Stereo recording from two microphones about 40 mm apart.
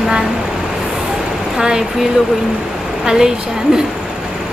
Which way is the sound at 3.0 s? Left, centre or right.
Centre.